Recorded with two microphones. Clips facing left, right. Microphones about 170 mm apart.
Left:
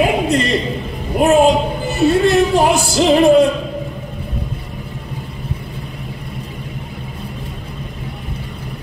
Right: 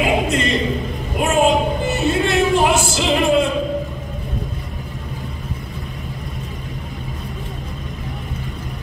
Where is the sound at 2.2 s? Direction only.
35° left (ahead or behind).